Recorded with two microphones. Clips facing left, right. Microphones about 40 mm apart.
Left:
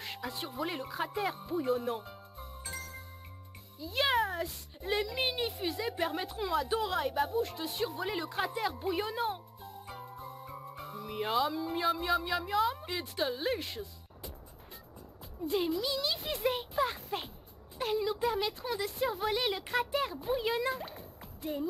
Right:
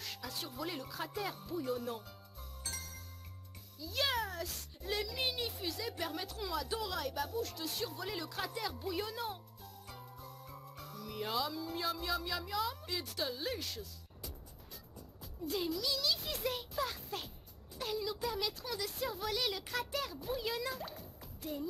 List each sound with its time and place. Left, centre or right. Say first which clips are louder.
0.0 s speech: left 5 dB; left
1.8 s music: left 6 dB; left
3.8 s speech: left 6 dB; left
16.4 s a sound: left 7 dB; left
17.7 s speech: left 7 dB; left